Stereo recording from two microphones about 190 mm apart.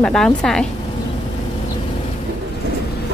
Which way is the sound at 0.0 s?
5° left (ahead or behind).